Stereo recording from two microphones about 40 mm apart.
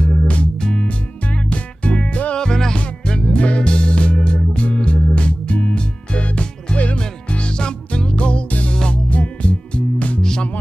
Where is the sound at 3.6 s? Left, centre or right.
Left.